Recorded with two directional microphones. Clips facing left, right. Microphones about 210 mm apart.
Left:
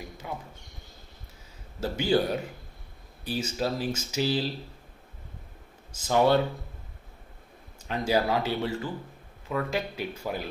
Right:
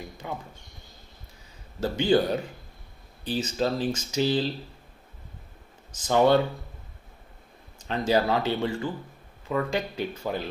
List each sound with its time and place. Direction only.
1.8 s speech: 5° left (ahead or behind)
3.3 s speech: 10° left (ahead or behind)
5.9 s speech: 10° left (ahead or behind)
7.8 s speech: 10° left (ahead or behind)